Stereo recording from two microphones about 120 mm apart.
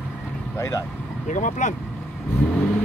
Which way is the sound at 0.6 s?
25° left (ahead or behind).